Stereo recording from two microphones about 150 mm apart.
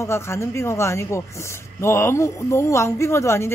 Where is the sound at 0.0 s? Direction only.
15° left (ahead or behind).